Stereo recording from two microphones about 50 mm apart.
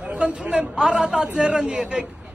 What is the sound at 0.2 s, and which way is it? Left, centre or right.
Speech, right.